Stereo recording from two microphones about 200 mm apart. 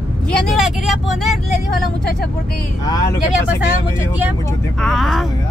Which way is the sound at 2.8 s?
20° left (ahead or behind).